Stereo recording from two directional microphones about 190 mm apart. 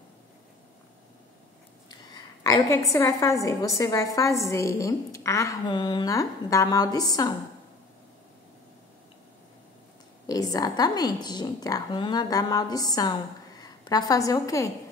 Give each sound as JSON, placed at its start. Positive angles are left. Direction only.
{"t": 1.9, "sound": "a woman's voice", "side_deg": 20}
{"t": 10.2, "sound": "a woman's voice", "side_deg": 20}